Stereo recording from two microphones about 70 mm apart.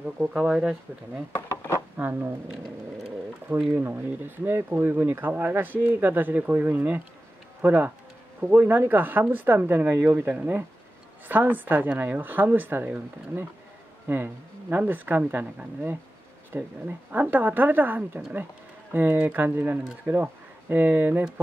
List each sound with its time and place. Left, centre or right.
0.3 s speech: centre
2.0 s speech: right
3.4 s speech: right